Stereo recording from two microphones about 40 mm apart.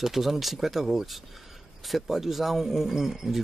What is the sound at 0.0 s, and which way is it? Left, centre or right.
Speech, centre.